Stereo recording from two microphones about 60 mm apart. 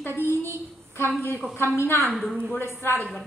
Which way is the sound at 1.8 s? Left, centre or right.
Left.